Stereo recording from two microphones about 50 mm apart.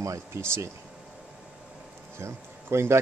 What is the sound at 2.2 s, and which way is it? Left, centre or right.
Speech, right.